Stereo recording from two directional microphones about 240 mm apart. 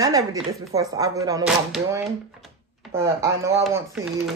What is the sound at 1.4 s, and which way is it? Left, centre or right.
Speech, centre.